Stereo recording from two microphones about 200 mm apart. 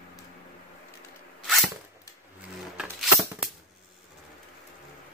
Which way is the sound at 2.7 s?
5° right (ahead or behind).